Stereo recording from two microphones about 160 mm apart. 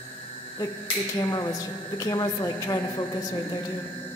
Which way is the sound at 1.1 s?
25° left (ahead or behind).